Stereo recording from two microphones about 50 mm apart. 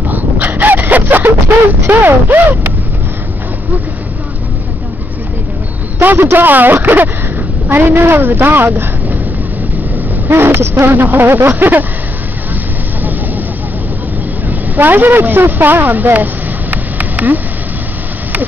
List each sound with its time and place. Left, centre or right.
0.1 s dog: right
1.9 s speech: right
5.9 s a sound: right
6.3 s a woman's voice: right
10.3 s speech: right
14.8 s speech: right
16.7 s a sound: right